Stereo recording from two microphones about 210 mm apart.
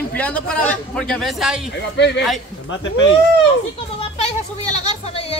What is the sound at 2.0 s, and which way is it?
Speech, 55° left (ahead or behind).